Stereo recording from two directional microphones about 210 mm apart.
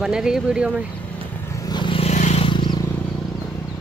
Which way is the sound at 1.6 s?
20° left (ahead or behind).